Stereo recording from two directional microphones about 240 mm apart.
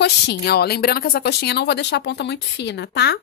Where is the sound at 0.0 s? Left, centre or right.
Left.